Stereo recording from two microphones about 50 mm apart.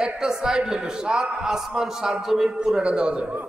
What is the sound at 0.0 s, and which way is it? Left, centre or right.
A man's voice, centre.